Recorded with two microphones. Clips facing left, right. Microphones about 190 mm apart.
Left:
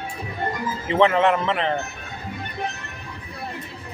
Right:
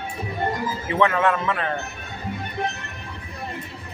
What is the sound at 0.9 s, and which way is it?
Speech, 25° left (ahead or behind).